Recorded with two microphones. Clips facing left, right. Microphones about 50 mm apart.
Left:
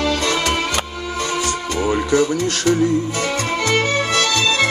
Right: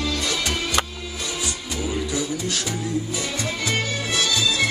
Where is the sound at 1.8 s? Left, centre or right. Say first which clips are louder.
Left 9 dB; left.